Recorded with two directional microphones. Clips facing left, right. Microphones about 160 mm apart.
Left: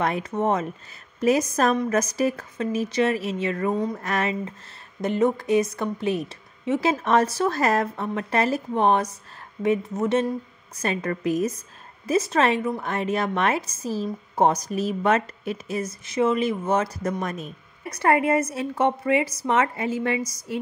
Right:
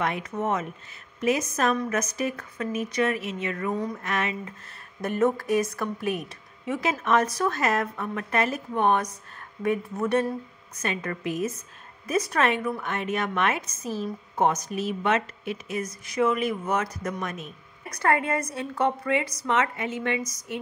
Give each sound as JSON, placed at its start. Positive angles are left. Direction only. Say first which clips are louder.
{"t": 0.0, "sound": "a woman's voice", "louder": "left 4 dB", "side_deg": 35}
{"t": 5.0, "sound": "a woman's voice", "louder": "left 2 dB", "side_deg": 20}
{"t": 10.8, "sound": "a woman's voice", "louder": "left 4 dB", "side_deg": 35}
{"t": 12.1, "sound": "a woman's voice", "louder": "left 3 dB", "side_deg": 25}